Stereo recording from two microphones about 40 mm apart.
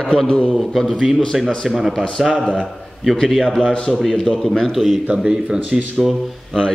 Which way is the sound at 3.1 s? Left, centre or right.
Centre.